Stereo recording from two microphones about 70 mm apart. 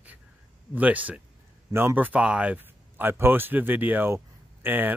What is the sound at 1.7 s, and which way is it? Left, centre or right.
Speech, right.